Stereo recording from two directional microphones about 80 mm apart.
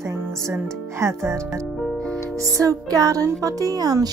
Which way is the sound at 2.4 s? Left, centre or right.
Right.